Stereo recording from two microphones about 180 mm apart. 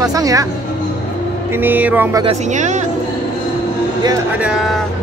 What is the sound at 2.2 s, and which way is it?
Speech, 40° right (ahead or behind).